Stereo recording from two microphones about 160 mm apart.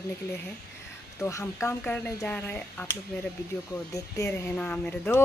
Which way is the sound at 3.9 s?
20° left (ahead or behind).